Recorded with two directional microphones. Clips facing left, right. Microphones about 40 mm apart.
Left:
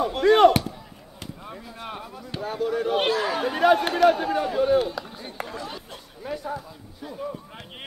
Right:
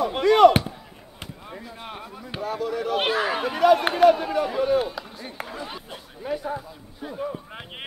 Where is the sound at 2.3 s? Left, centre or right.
Right.